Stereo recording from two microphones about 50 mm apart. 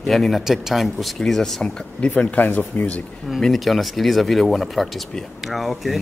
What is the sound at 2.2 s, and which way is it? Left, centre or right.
Speech, left.